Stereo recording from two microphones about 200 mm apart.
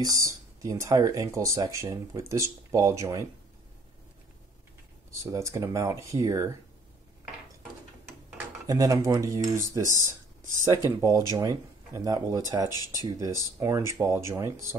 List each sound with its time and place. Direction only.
0.0 s speech: 15° right (ahead or behind)
5.3 s speech: 15° right (ahead or behind)
8.6 s speech: 15° right (ahead or behind)
10.6 s speech: 15° right (ahead or behind)